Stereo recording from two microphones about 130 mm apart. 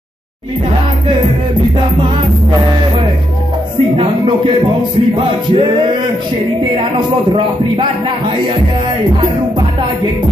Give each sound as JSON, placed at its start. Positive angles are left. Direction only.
{"t": 3.9, "sound": "speech", "side_deg": -40}